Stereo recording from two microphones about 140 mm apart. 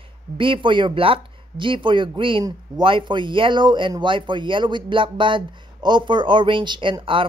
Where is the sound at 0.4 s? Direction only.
35° right (ahead or behind).